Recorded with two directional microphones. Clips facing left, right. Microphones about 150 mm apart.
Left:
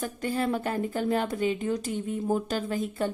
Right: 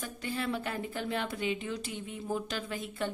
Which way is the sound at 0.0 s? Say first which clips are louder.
Left 7 dB; 45° left (ahead or behind).